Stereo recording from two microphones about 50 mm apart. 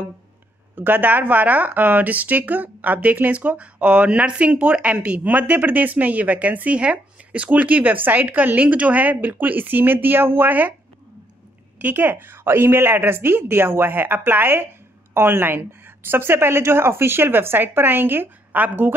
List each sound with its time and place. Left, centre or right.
0.7 s speech: right
11.8 s a woman's voice: right